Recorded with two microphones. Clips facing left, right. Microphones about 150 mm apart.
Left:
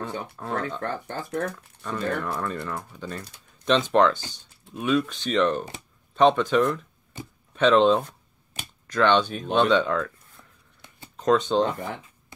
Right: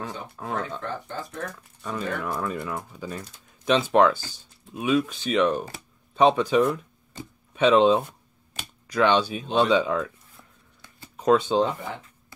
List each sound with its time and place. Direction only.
0.0 s speech: 5° right (ahead or behind)
0.7 s speech: 60° left (ahead or behind)
1.8 s speech: 5° right (ahead or behind)